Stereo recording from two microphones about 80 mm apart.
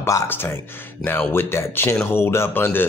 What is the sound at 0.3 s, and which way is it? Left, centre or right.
A man's voice, left.